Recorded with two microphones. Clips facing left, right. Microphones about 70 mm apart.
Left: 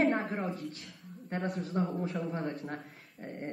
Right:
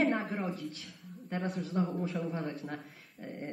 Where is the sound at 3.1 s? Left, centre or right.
Left.